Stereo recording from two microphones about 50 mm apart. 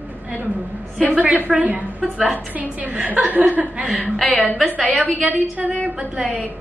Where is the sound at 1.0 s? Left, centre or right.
Right.